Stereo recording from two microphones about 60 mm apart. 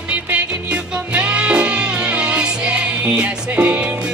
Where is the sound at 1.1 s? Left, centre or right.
Centre.